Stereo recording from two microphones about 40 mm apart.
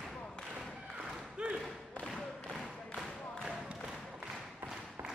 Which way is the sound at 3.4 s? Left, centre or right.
Centre.